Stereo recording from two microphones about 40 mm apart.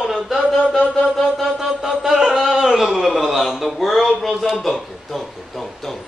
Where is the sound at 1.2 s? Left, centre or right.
Centre.